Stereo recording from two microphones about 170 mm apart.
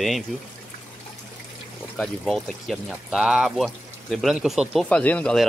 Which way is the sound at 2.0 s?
5° left (ahead or behind).